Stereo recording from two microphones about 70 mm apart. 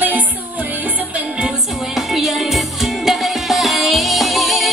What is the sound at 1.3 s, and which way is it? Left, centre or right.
Music, centre.